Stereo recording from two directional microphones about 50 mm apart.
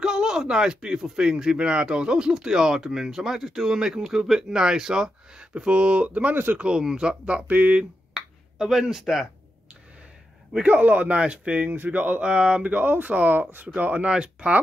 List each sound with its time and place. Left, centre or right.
0.0 s speech: centre; by 6.6 s right
6.6 s speech: centre
7.7 s finger snapping: centre
9.0 s speech: centre
10.6 s speech: right
11.6 s speech: right
12.3 s speech: right
12.7 s speech: right